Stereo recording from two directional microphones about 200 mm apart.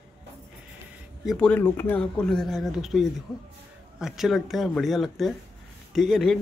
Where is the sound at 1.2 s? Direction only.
5° left (ahead or behind).